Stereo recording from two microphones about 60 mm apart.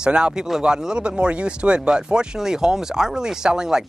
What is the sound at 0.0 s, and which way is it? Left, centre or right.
Speech, centre.